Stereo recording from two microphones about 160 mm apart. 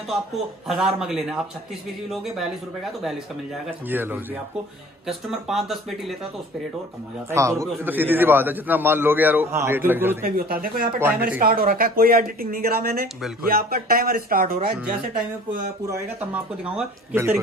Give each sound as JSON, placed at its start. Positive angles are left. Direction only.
{"t": 0.7, "sound": "speech", "side_deg": -5}
{"t": 3.9, "sound": "a man's voice", "side_deg": -10}
{"t": 5.0, "sound": "speech", "side_deg": 0}
{"t": 7.2, "sound": "a man's voice", "side_deg": -20}
{"t": 10.2, "sound": "speech", "side_deg": -65}
{"t": 16.6, "sound": "a man's voice", "side_deg": -10}